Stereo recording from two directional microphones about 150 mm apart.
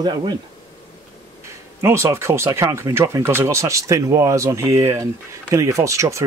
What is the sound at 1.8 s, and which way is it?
Speech, 15° right (ahead or behind).